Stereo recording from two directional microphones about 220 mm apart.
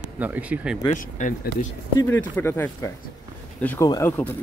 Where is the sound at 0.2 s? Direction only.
5° right (ahead or behind).